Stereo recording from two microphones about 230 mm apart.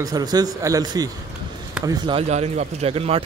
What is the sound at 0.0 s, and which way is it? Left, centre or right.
Speech, centre.